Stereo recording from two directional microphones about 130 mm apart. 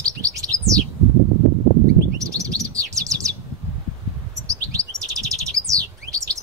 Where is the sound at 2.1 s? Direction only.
25° right (ahead or behind).